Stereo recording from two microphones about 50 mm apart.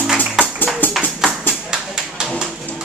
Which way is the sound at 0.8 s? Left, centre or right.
Left.